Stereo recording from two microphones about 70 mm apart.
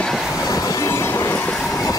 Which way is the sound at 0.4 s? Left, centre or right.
Left.